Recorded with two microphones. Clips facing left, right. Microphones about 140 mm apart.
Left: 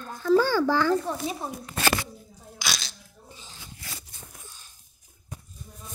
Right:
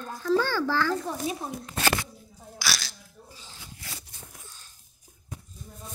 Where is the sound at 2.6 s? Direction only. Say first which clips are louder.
Right 1 dB; 20° left (ahead or behind).